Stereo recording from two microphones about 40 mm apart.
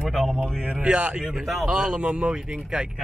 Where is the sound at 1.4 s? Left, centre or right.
Centre.